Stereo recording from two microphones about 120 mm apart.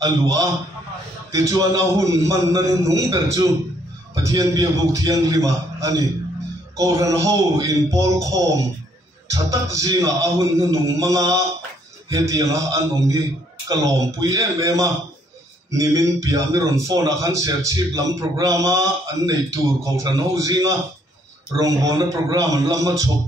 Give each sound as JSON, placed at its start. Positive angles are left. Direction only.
{"t": 0.0, "sound": "a man's voice", "side_deg": -30}